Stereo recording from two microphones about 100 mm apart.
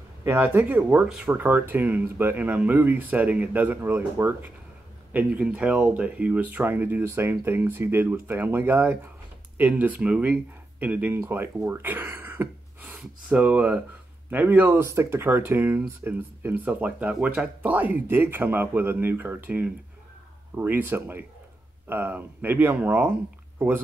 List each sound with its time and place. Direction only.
0.2 s speech: 25° right (ahead or behind)